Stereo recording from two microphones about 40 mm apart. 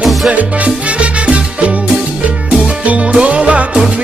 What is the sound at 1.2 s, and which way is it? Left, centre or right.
Music, right.